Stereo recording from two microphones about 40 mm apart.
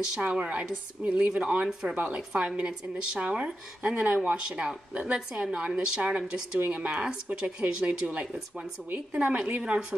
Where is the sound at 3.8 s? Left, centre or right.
Right.